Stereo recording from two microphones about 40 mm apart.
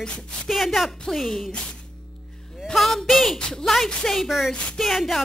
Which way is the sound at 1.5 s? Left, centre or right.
Left.